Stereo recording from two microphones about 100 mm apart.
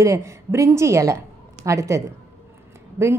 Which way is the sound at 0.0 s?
30° right (ahead or behind).